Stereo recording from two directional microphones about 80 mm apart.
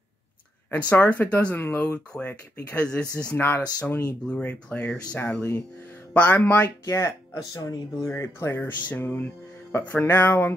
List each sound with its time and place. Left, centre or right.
0.7 s speech: left
3.3 s speech: left
6.9 s speech: left
8.1 s speech: left